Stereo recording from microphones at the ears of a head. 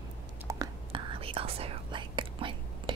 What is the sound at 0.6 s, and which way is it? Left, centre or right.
Whispering, right.